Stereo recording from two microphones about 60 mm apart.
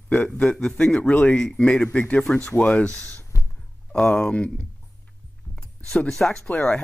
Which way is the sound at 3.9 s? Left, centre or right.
Centre.